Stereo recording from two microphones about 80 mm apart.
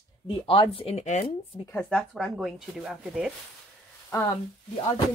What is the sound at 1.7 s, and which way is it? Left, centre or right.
Speech, centre.